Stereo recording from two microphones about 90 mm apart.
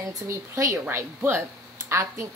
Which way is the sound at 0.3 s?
30° right (ahead or behind).